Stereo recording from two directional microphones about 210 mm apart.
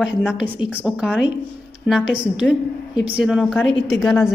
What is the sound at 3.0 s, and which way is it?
A woman's voice, 5° right (ahead or behind).